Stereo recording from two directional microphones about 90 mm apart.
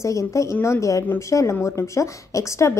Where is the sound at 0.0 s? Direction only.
35° left (ahead or behind).